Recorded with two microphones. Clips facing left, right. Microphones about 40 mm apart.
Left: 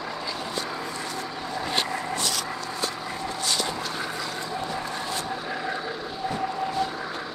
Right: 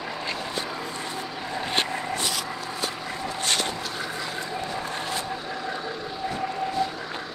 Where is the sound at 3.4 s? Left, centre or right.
Right.